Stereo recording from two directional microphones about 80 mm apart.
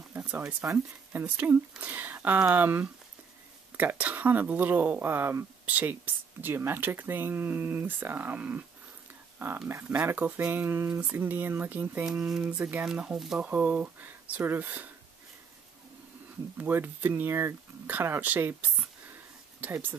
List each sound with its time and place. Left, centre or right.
0.2 s speech: centre
12.9 s speech: centre
16.5 s speech: right